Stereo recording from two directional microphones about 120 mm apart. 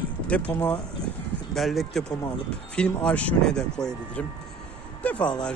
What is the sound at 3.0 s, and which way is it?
Speech, 10° left (ahead or behind).